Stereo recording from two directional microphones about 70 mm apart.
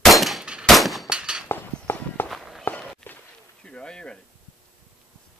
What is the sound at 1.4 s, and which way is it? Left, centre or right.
Walk, left.